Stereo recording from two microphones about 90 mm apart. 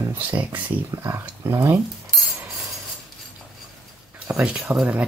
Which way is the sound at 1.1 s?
30° right (ahead or behind).